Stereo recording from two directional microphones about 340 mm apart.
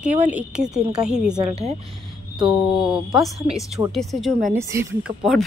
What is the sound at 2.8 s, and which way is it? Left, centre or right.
Speech, centre.